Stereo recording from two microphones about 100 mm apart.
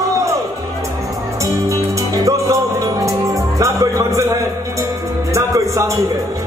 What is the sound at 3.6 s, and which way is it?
Music, 30° right (ahead or behind).